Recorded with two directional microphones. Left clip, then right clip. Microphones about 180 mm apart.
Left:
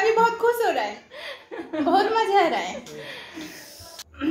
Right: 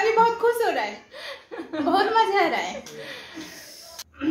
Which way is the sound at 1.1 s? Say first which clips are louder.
Left 1 dB; 15° right (ahead or behind).